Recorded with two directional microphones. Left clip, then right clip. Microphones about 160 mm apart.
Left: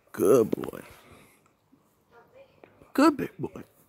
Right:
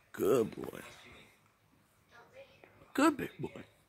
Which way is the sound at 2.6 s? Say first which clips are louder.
Left 8 dB; 45° left (ahead or behind).